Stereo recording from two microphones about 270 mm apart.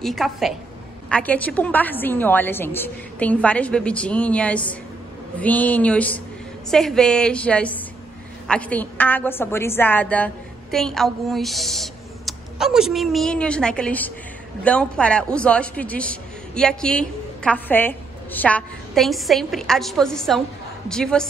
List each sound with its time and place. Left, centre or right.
0.0 s a man's voice: centre